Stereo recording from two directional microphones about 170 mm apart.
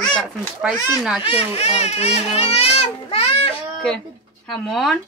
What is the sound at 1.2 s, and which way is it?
A child's voice, 35° left (ahead or behind).